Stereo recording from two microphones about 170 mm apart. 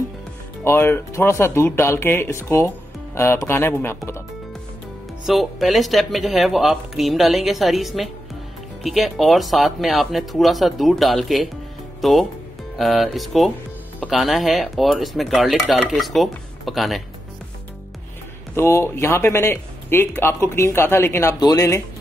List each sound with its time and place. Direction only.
0.7 s a man's voice: 15° left (ahead or behind)
5.2 s speech: centre (ahead or behind)
18.5 s a man's voice: 15° left (ahead or behind)